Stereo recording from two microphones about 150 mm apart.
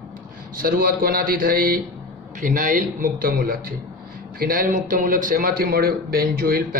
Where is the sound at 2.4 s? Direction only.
60° right (ahead or behind).